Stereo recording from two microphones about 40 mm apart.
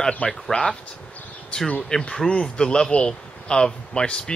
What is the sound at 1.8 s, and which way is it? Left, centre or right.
Speech, centre.